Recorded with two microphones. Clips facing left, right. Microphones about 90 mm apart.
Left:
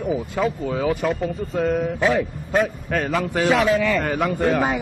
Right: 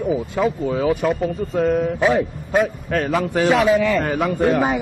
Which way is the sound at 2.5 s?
Centre (ahead or behind).